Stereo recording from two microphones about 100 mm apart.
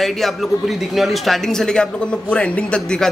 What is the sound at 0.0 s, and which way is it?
A man's voice, centre (ahead or behind).